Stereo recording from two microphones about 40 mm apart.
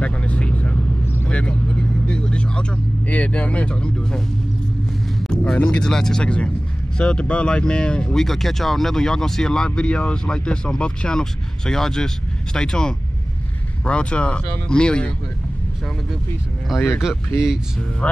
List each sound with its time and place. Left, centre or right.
0.0 s vehicle: left
3.1 s speech: left
5.4 s speech: left
5.9 s speech: centre
6.2 s speech: left
8.2 s speech: centre
9.8 s speech: left
16.7 s speech: centre